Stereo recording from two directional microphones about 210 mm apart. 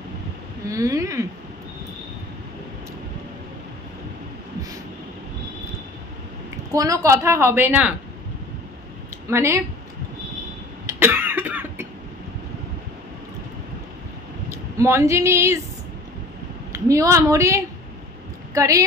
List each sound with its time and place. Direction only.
0.7 s speech: 15° right (ahead or behind)
6.7 s a woman's voice: 15° right (ahead or behind)
9.3 s a woman's voice: 10° right (ahead or behind)
10.9 s cough: 10° right (ahead or behind)
14.5 s speech: 15° right (ahead or behind)
16.7 s a woman's voice: 15° right (ahead or behind)